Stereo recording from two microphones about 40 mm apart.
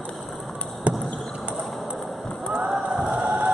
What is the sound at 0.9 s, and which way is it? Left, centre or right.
Basketball bounce, right.